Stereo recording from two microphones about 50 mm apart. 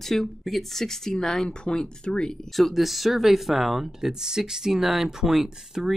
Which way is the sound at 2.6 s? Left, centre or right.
Centre.